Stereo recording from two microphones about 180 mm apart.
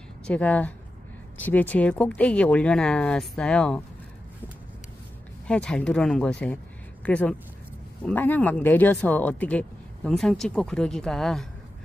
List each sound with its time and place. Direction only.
0.3 s speech: 10° left (ahead or behind)
5.5 s speech: 5° left (ahead or behind)